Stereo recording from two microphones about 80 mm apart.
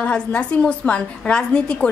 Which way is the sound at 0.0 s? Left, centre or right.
Centre.